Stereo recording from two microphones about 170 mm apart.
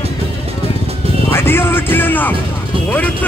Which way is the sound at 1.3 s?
15° left (ahead or behind).